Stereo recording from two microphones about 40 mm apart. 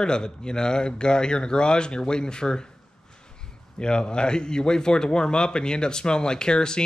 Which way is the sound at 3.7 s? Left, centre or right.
Left.